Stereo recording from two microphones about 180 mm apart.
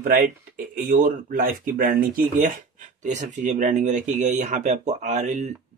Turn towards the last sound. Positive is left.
turn(degrees=-40)  # may be behind; listen again after turning